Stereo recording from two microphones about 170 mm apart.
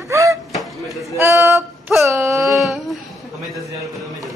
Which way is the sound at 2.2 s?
15° right (ahead or behind).